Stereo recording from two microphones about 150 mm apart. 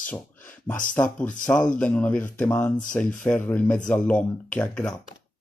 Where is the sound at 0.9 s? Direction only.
15° left (ahead or behind).